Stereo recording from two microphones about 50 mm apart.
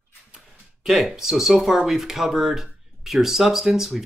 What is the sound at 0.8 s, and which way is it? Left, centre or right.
Speech, centre.